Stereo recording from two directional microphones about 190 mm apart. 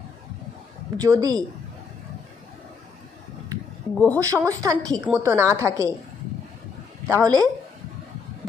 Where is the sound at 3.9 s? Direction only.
10° left (ahead or behind).